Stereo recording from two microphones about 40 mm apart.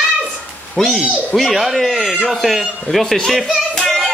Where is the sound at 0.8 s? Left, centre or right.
Centre.